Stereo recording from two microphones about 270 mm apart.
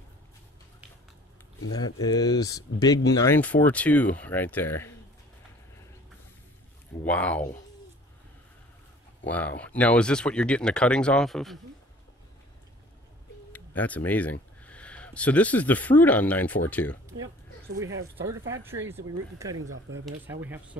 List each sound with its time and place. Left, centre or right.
2.0 s speech: centre
7.1 s speech: centre
9.3 s speech: centre
13.5 s speech: centre
18.5 s speech: centre
19.5 s speech: right
20.2 s speech: centre